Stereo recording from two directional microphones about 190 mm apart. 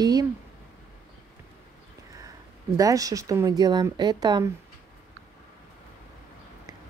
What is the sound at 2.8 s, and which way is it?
Speech, 20° right (ahead or behind).